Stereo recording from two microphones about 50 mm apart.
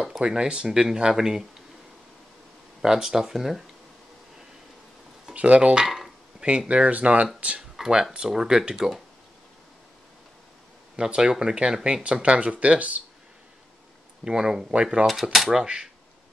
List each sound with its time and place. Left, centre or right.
0.2 s speech: centre
2.8 s speech: centre
5.3 s speech: right
5.8 s dishes: centre
6.7 s speech: right
7.7 s speech: centre
11.0 s speech: centre
14.2 s speech: centre
15.3 s speech: centre
15.6 s speech: centre